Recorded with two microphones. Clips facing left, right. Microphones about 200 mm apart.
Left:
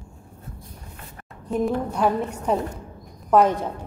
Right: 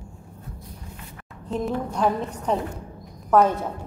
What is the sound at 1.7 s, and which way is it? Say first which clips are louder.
A woman's voice: even; 5° left (ahead or behind).